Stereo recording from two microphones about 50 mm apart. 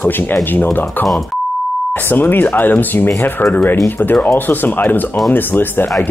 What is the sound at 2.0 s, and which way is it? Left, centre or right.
Speech, left.